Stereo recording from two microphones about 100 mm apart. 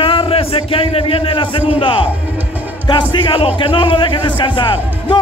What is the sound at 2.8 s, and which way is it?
A man's voice, 50° left (ahead or behind).